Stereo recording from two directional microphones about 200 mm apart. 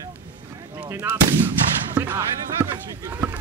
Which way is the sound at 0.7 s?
10° right (ahead or behind).